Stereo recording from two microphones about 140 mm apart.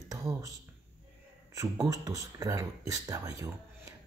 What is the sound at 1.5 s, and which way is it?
Speech, 25° right (ahead or behind).